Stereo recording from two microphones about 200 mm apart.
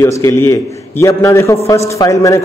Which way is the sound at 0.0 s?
15° left (ahead or behind).